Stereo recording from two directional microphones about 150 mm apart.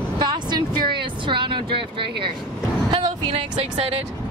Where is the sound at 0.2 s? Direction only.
30° right (ahead or behind).